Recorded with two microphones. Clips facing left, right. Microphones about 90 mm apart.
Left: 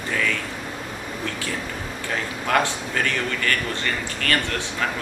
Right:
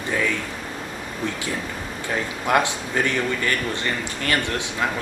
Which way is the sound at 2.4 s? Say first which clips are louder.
Right 1 dB; 20° right (ahead or behind).